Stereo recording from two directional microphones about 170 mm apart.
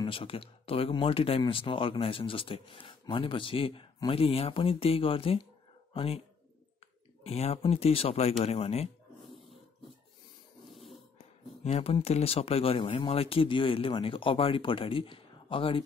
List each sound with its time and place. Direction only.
0.0 s speech: 30° left (ahead or behind)
7.2 s speech: 35° left (ahead or behind)
10.7 s dog: centre (ahead or behind)
11.6 s speech: 35° left (ahead or behind)